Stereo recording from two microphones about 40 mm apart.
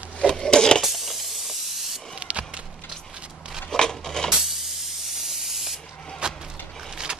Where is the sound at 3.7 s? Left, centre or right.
Centre.